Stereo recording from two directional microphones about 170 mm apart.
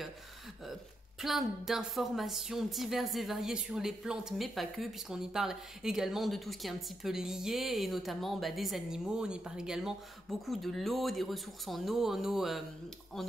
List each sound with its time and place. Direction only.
1.2 s speech: centre (ahead or behind)